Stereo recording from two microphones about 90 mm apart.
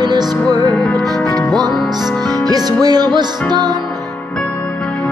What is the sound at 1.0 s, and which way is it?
Music, 45° right (ahead or behind).